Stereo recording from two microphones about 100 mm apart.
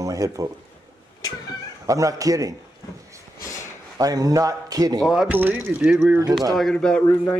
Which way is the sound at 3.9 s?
35° right (ahead or behind).